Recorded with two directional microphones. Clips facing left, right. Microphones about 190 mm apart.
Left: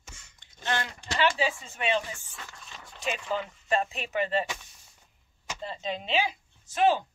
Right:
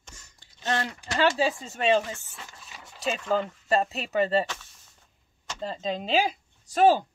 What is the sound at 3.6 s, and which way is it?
Speech, 35° right (ahead or behind).